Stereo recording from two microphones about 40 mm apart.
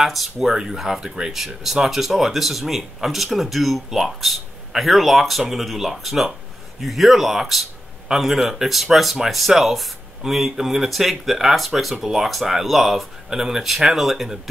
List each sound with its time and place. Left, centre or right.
0.0 s speech: centre
1.0 s speech: centre
1.3 s speech: centre